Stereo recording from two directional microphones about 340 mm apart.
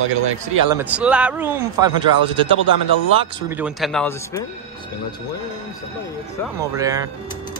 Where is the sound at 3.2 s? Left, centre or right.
Centre.